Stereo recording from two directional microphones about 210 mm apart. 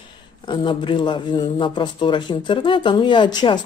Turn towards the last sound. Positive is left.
turn(degrees=20)  # may be behind; listen again after turning